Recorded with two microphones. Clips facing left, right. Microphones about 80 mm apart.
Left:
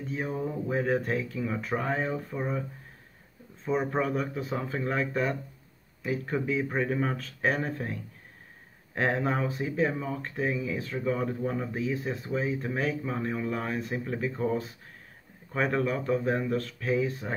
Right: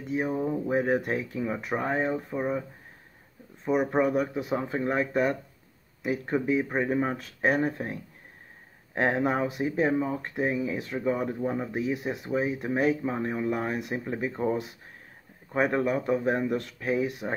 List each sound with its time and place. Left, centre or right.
0.0 s speech: centre
3.6 s speech: centre